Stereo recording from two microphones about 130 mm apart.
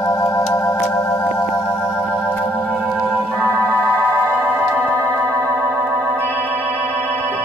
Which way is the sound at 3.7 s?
10° left (ahead or behind).